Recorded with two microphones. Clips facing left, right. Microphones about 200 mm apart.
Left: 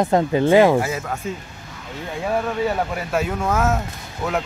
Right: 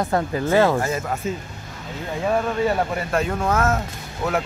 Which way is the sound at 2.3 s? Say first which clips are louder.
Right 1 dB; 5° left (ahead or behind).